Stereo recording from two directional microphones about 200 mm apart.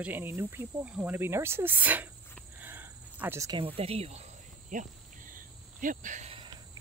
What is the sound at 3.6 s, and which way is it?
Cricket, 30° right (ahead or behind).